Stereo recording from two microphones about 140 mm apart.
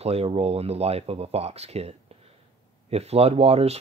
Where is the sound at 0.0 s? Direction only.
45° right (ahead or behind).